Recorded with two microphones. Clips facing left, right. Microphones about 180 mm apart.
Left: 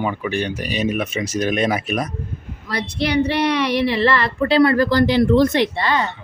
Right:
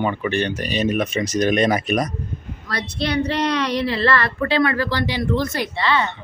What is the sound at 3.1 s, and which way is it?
Speech, 10° left (ahead or behind).